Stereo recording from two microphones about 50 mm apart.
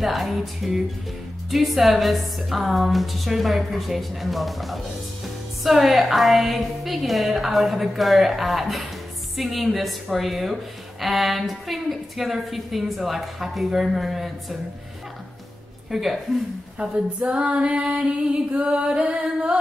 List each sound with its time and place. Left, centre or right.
0.0 s a woman's voice: centre
15.9 s a woman's voice: centre
16.7 s female singing: centre